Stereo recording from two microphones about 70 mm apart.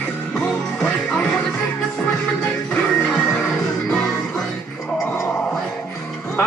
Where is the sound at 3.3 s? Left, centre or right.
Centre.